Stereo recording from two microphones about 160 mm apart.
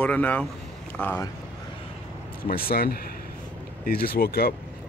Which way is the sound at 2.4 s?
70° left (ahead or behind).